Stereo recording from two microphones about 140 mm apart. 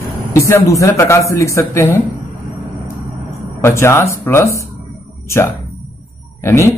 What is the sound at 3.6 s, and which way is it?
Speech, 20° left (ahead or behind).